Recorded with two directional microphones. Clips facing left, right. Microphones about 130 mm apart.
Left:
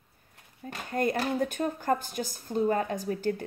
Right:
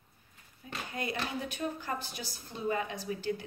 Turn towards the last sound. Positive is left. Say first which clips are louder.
# left 5 dB
turn(degrees=45)  # may be behind; listen again after turning